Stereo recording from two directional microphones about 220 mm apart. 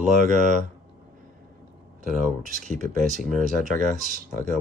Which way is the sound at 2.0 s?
35° right (ahead or behind).